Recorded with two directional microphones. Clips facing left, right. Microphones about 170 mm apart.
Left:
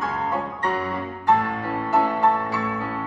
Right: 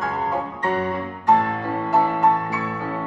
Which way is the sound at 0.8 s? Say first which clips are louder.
Right 2 dB; 25° right (ahead or behind).